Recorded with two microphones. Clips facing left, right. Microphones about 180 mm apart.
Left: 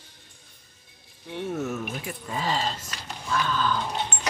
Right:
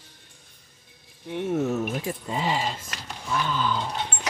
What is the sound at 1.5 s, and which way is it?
Speech, 30° right (ahead or behind).